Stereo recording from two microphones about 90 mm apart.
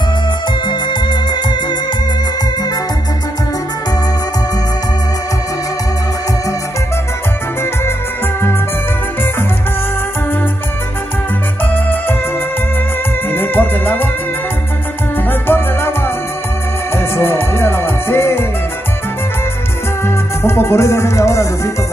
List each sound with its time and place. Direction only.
11.7 s music: 25° left (ahead or behind)
13.3 s music: 25° left (ahead or behind)
15.4 s music: 25° left (ahead or behind)
16.9 s music: 25° left (ahead or behind)
20.4 s music: 30° left (ahead or behind)